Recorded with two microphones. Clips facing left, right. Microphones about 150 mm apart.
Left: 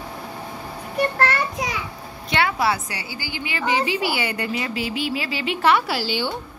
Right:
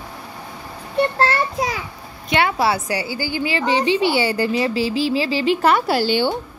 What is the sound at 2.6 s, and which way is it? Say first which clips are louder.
Speech: right 4 dB; 35° right (ahead or behind).